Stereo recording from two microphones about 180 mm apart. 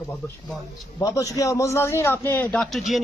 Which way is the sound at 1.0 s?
20° left (ahead or behind).